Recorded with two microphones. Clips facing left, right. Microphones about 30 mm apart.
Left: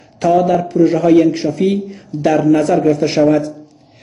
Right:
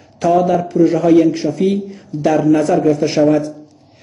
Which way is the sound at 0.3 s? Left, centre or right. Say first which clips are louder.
Left 1 dB; centre.